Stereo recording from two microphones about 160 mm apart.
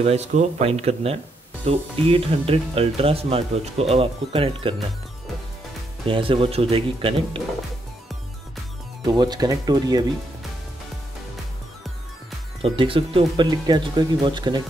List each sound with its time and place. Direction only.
0.0 s speech: 45° right (ahead or behind)
6.0 s speech: 35° right (ahead or behind)
9.0 s speech: 25° right (ahead or behind)
12.6 s speech: 35° right (ahead or behind)